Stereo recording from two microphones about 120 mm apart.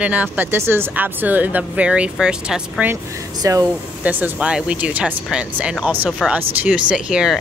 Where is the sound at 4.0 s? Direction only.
15° right (ahead or behind).